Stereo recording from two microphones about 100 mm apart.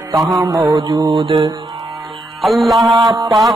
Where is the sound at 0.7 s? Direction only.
40° right (ahead or behind).